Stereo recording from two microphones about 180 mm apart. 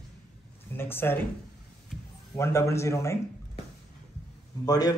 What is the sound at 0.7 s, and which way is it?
Speech, 10° left (ahead or behind).